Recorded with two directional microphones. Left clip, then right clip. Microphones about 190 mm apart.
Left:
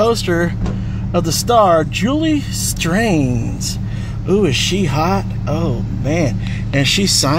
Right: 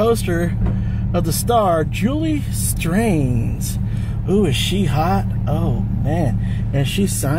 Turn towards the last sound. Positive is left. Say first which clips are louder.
# left 8 dB
turn(degrees=45)  # may be behind; listen again after turning